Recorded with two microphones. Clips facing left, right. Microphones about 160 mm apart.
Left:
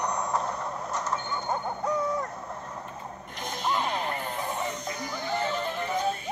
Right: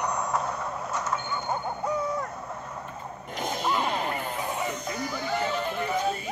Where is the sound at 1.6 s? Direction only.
5° right (ahead or behind).